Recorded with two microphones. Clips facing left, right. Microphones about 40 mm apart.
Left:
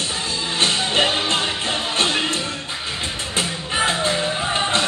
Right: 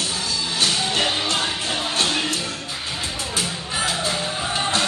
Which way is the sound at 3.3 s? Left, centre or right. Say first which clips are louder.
Left 5 dB; left.